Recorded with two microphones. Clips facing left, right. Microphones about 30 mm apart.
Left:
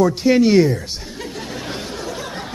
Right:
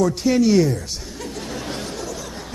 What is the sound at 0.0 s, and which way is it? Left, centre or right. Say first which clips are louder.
Speech: left 3 dB; left.